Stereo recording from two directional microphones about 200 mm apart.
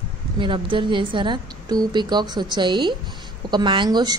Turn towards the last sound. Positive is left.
turn(degrees=-20)  # may be behind; listen again after turning